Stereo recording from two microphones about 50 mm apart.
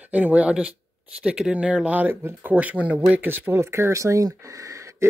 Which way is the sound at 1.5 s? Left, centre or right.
Right.